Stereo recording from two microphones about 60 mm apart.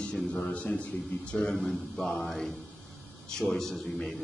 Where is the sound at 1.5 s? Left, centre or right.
Centre.